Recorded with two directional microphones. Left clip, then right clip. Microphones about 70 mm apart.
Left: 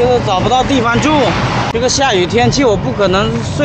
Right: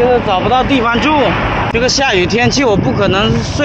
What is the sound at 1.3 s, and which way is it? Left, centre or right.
Vehicle, left.